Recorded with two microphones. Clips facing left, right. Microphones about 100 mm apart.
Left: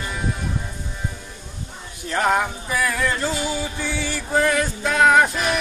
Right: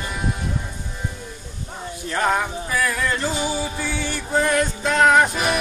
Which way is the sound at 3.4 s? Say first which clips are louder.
Right 1 dB; 20° right (ahead or behind).